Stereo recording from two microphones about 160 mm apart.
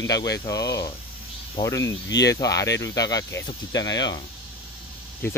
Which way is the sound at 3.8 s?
90° left.